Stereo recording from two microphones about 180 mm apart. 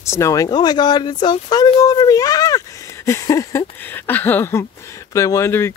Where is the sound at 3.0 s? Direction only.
15° left (ahead or behind).